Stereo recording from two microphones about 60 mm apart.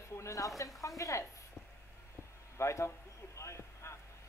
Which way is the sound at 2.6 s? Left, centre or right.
Left.